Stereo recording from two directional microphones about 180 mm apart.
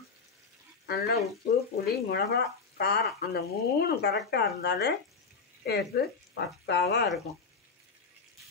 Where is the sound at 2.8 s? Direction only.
65° left (ahead or behind).